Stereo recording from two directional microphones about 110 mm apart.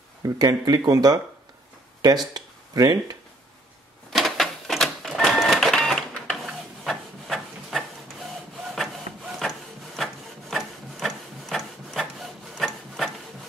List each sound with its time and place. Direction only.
0.2 s speech: 35° right (ahead or behind)
2.3 s a sound: 35° right (ahead or behind)
4.1 s cash register: centre (ahead or behind)
9.9 s wood: centre (ahead or behind)